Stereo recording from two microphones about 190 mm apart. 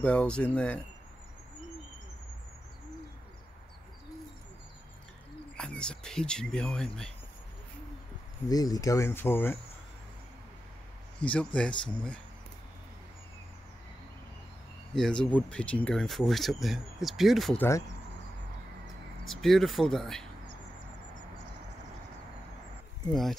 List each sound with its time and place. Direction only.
0.0 s speech: 5° left (ahead or behind)
5.6 s speech: 5° left (ahead or behind)
8.5 s speech: 20° left (ahead or behind)
11.1 s speech: 5° left (ahead or behind)
15.0 s speech: 5° left (ahead or behind)
19.2 s speech: centre (ahead or behind)